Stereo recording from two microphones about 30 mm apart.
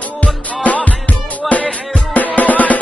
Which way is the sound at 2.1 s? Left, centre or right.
Left.